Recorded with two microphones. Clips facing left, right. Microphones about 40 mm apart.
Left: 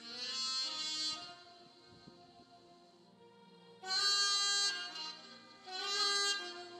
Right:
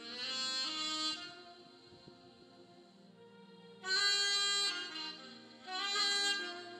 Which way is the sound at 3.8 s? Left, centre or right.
Right.